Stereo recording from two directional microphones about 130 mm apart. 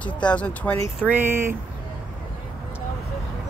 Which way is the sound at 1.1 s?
15° right (ahead or behind).